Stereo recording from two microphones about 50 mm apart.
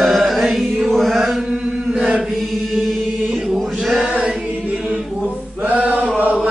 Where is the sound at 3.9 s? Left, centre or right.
Right.